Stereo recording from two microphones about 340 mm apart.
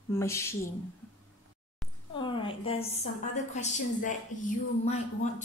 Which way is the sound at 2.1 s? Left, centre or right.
Centre.